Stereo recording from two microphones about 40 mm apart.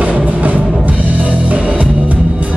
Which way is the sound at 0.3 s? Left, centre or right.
Right.